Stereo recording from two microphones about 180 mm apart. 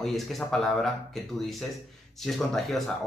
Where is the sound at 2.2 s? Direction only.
Centre (ahead or behind).